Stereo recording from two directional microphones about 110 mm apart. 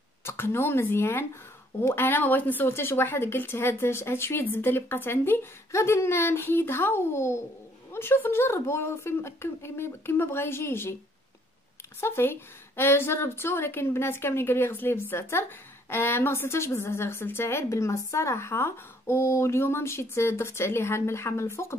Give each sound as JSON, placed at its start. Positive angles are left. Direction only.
{"t": 0.2, "sound": "a woman's voice", "side_deg": 20}
{"t": 12.0, "sound": "a woman's voice", "side_deg": 20}